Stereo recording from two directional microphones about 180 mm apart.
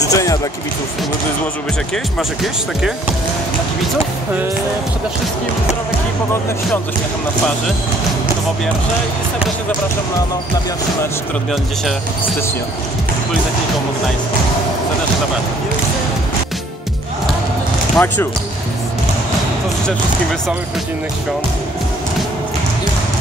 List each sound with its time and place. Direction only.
0.1 s speech: 20° left (ahead or behind)
2.1 s speech: centre (ahead or behind)
17.9 s speech: 10° left (ahead or behind)